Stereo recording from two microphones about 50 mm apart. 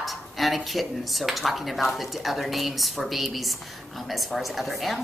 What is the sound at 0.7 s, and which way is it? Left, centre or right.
A woman's voice, centre.